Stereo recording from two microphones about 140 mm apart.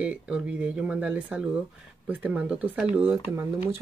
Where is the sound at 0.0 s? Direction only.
5° right (ahead or behind).